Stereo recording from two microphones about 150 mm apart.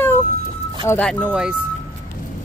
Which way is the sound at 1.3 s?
5° right (ahead or behind).